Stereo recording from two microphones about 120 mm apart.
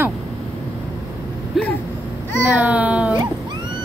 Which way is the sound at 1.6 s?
Centre (ahead or behind).